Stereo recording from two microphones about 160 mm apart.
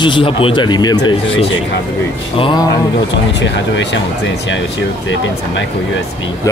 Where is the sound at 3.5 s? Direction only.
90° left.